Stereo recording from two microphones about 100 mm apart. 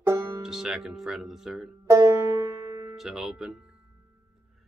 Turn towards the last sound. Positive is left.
turn(degrees=-5)  # may be behind; listen again after turning